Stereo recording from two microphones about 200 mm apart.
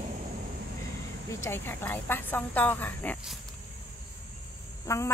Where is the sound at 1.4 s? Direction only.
10° left (ahead or behind).